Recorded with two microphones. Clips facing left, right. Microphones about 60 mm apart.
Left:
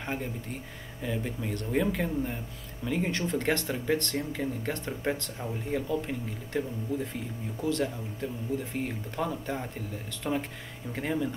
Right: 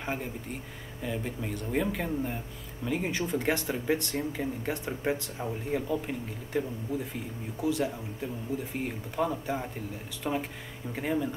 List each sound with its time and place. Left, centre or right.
0.0 s speech: centre
7.6 s speech: centre